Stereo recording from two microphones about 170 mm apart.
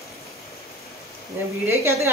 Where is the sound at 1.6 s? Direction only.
15° right (ahead or behind).